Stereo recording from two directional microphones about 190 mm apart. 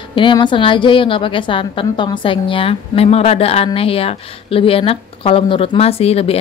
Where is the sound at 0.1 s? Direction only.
25° left (ahead or behind).